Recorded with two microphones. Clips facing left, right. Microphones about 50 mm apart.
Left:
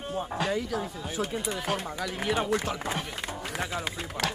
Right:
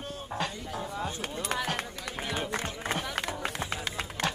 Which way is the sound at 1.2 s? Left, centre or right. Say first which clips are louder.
Left 6 dB; left.